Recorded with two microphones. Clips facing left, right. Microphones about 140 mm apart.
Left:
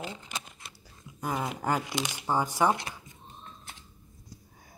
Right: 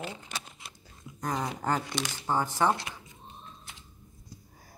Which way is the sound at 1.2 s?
5° left (ahead or behind).